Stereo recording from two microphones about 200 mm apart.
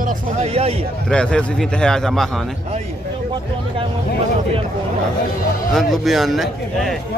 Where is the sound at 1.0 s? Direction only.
5° left (ahead or behind).